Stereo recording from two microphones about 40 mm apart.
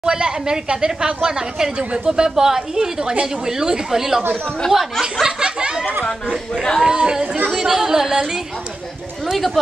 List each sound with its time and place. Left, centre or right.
0.0 s a woman's voice: centre
5.2 s speech: right
6.5 s speech: centre
6.8 s a woman's voice: centre
9.2 s speech: centre